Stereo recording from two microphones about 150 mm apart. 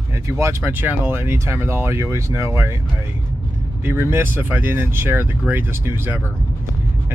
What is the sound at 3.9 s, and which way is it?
Speech, 15° right (ahead or behind).